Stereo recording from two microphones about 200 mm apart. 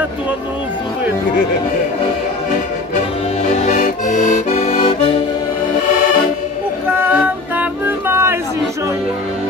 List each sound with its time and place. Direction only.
3.4 s accordion: 35° left (ahead or behind)
7.0 s music: 10° right (ahead or behind)